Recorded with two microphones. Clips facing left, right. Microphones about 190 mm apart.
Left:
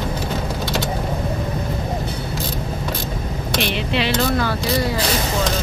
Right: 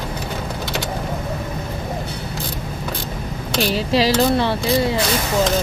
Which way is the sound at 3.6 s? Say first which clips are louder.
Right 5 dB; 35° right (ahead or behind).